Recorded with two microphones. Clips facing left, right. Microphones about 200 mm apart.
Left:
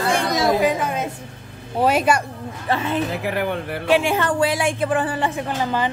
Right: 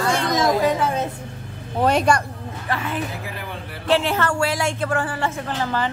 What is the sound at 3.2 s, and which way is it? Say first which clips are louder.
Speech: left 10 dB; 70° left (ahead or behind).